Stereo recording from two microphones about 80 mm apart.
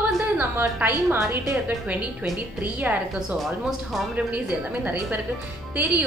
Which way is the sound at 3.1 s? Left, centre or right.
Centre.